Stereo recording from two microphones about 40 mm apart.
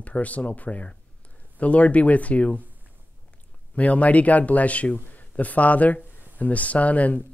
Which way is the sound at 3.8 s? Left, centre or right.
Left.